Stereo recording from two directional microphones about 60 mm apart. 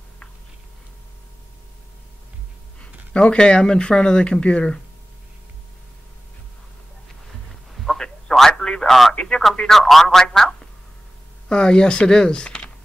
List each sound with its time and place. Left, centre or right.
2.8 s speech: centre
7.7 s telephone: centre
9.6 s speech: centre